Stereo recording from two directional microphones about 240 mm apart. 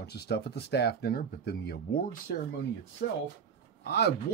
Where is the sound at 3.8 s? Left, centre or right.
Left.